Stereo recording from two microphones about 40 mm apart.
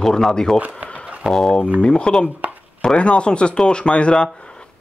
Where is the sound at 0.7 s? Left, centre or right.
Left.